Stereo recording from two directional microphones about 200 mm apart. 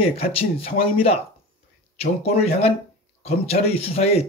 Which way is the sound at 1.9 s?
30° left (ahead or behind).